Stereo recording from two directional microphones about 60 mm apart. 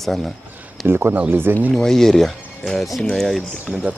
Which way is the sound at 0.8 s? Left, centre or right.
Right.